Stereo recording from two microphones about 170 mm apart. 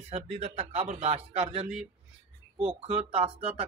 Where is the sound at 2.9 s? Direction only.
35° right (ahead or behind).